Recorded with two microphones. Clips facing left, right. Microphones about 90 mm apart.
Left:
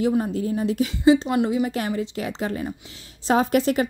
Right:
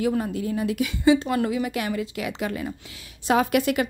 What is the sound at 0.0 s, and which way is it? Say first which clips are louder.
A woman's voice: left 2 dB; 30° left (ahead or behind).